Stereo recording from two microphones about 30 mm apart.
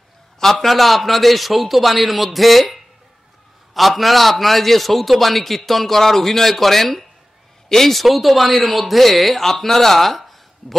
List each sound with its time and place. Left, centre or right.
0.4 s a man's voice: centre
3.7 s a man's voice: centre
8.0 s a man's voice: centre